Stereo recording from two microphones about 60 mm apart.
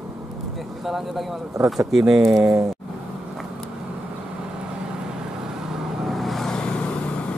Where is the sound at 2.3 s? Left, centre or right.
Right.